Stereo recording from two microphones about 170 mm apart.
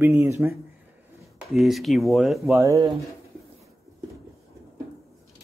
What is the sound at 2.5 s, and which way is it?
Speech, 20° right (ahead or behind).